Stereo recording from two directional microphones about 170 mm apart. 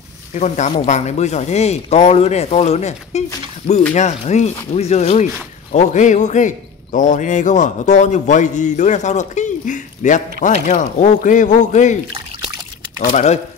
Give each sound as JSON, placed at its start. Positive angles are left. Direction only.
{"t": 0.3, "sound": "a man's voice", "side_deg": 45}
{"t": 13.1, "sound": "speech", "side_deg": 40}